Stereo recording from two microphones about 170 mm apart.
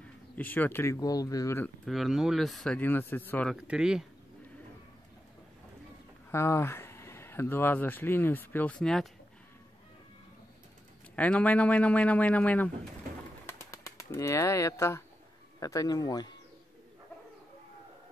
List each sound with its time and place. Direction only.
0.0 s speech: 10° left (ahead or behind)
1.9 s speech: centre (ahead or behind)
3.5 s speech: 5° right (ahead or behind)
6.3 s speech: 15° left (ahead or behind)
11.1 s speech: 10° left (ahead or behind)
13.5 s bird: 15° left (ahead or behind)
15.6 s speech: 20° left (ahead or behind)